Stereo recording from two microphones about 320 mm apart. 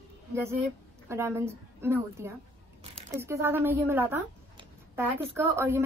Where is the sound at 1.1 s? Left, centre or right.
Centre.